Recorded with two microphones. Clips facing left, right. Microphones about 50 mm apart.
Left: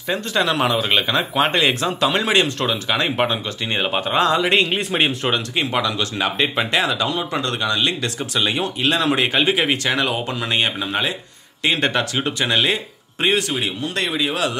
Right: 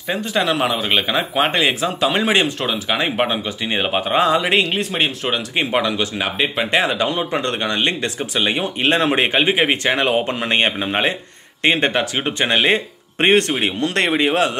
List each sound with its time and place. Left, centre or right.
0.1 s speech: centre
4.6 s speech: centre
5.6 s speech: right
6.1 s speech: centre
6.7 s speech: right
8.2 s speech: centre; by 11.1 s right
11.6 s speech: right
13.2 s speech: right
13.7 s speech: right